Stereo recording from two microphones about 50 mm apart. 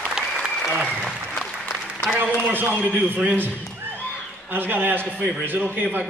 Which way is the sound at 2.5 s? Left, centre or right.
Right.